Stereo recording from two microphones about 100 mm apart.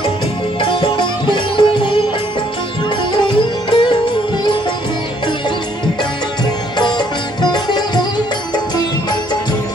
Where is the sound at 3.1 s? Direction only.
55° left (ahead or behind).